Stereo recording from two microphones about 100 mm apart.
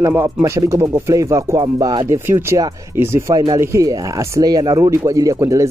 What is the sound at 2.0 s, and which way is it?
Speech, 25° right (ahead or behind).